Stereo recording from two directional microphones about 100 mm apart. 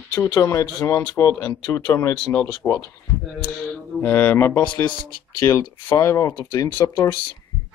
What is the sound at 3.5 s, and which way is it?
Music, 10° left (ahead or behind).